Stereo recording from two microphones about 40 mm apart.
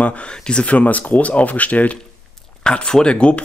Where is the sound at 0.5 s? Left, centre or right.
Left.